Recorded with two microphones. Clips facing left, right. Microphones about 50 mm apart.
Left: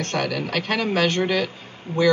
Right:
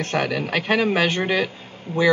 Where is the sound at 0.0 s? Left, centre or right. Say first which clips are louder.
Right 2 dB; centre.